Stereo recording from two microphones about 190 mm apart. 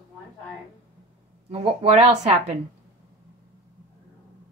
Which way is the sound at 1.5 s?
30° right (ahead or behind).